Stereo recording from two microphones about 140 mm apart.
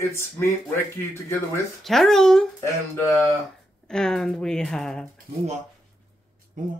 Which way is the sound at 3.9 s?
5° left (ahead or behind).